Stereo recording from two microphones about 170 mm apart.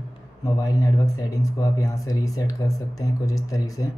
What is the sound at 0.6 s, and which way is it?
Speech, 20° left (ahead or behind).